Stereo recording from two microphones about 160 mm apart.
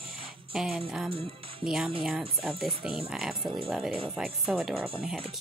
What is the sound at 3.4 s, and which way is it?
Speech, 30° right (ahead or behind).